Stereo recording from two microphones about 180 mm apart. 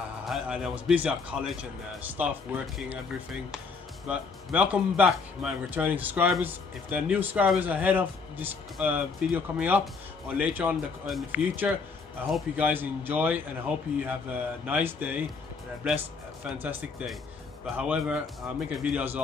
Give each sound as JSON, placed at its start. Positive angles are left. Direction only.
{"t": 0.2, "sound": "speech", "side_deg": 0}
{"t": 16.4, "sound": "speech", "side_deg": -5}